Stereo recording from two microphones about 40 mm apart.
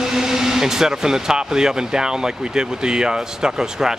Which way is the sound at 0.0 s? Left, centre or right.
Centre.